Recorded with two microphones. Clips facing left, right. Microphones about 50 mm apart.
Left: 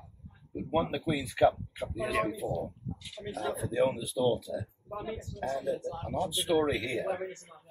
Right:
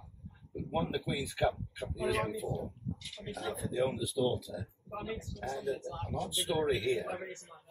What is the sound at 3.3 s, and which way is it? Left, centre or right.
Speech, left.